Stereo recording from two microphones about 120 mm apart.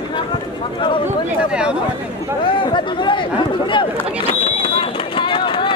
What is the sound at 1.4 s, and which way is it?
Speech, 10° right (ahead or behind).